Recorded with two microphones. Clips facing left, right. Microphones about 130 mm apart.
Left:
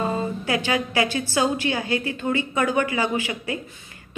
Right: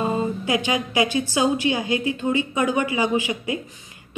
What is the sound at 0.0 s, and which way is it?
A woman's voice, 15° right (ahead or behind).